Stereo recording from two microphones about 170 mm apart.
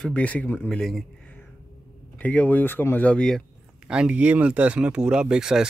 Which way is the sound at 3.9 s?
5° right (ahead or behind).